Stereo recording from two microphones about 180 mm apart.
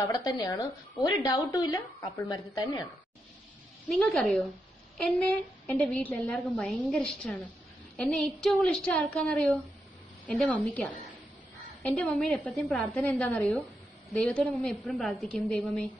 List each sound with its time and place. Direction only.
0.1 s a woman's voice: 25° left (ahead or behind)
3.9 s a woman's voice: 5° left (ahead or behind)